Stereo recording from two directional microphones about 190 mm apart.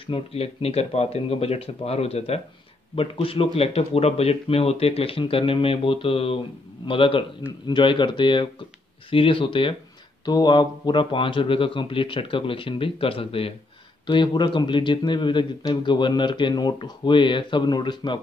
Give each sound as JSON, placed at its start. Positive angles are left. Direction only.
{"t": 0.0, "sound": "a man's voice", "side_deg": 30}